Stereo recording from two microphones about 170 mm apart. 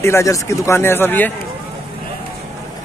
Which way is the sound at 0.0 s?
15° left (ahead or behind).